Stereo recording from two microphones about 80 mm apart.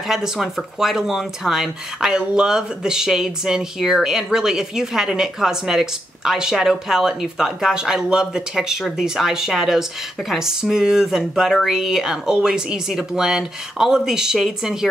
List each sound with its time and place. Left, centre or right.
0.1 s speech: centre